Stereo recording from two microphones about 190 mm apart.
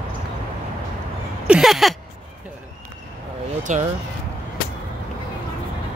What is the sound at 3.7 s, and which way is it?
Speech, 40° right (ahead or behind).